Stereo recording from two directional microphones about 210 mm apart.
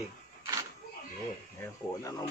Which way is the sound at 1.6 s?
15° left (ahead or behind).